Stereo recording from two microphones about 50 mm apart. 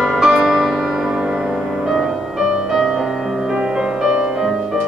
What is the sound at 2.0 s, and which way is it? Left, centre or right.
Music, centre.